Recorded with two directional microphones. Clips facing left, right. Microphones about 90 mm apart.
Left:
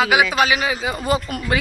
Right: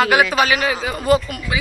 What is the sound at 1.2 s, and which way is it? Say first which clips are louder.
Speech: left 3 dB; 40° left (ahead or behind).